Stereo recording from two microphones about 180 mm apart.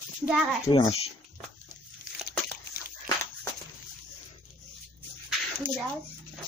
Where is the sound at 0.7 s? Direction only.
25° left (ahead or behind).